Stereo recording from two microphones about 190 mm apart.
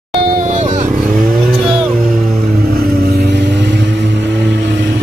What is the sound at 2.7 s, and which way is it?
Vehicle, 50° right (ahead or behind).